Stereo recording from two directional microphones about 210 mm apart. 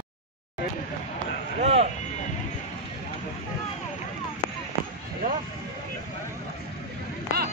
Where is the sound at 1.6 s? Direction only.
30° right (ahead or behind).